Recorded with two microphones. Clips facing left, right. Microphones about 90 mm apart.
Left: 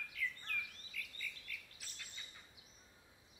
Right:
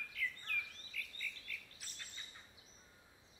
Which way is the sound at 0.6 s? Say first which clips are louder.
Right 1 dB; 35° right (ahead or behind).